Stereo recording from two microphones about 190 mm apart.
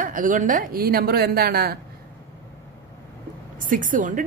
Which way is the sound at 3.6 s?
45° right (ahead or behind).